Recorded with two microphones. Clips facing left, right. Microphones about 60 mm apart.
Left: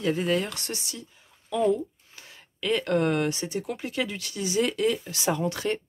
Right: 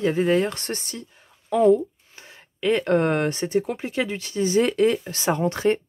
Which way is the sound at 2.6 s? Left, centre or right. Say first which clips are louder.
Right 4 dB; right.